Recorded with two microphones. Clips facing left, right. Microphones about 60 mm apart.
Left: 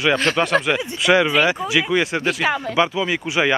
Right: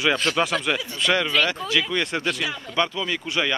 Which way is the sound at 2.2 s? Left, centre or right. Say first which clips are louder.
Left 7 dB; left.